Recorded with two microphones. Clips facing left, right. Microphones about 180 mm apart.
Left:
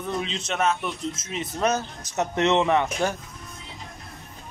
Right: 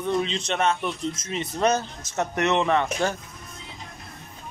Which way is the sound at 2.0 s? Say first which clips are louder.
Left 3 dB; 20° left (ahead or behind).